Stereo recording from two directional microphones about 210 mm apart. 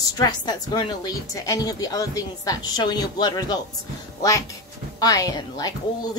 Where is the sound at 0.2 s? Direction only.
20° left (ahead or behind).